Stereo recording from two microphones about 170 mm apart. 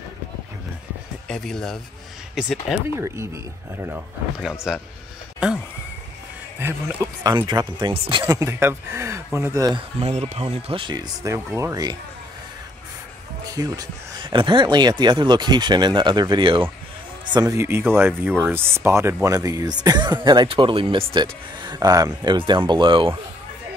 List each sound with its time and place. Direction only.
1.2 s speech: 5° left (ahead or behind)
6.6 s speech: 15° right (ahead or behind)
8.3 s speech: 15° right (ahead or behind)
9.9 s speech: 40° right (ahead or behind); by 12.0 s 25° right (ahead or behind)
13.6 s speech: 25° right (ahead or behind)